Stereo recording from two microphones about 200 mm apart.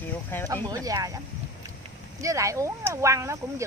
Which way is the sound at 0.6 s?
15° right (ahead or behind).